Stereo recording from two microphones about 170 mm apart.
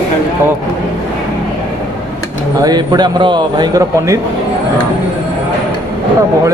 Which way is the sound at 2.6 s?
25° right (ahead or behind).